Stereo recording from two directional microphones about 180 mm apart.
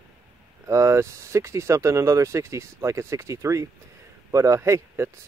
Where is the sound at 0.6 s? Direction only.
15° right (ahead or behind).